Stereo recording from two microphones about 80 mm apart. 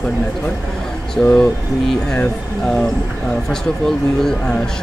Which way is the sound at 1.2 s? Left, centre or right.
Centre.